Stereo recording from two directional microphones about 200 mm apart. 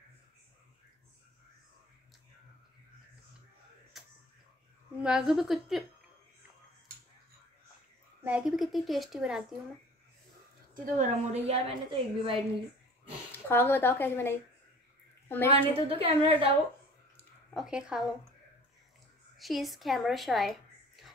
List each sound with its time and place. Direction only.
5.0 s a woman's voice: 5° right (ahead or behind)
8.2 s a woman's voice: 5° right (ahead or behind)
10.7 s a woman's voice: 40° right (ahead or behind)
13.5 s a woman's voice: 10° left (ahead or behind)
16.0 s a woman's voice: 30° right (ahead or behind)
17.6 s a woman's voice: 5° right (ahead or behind)
19.3 s a woman's voice: centre (ahead or behind)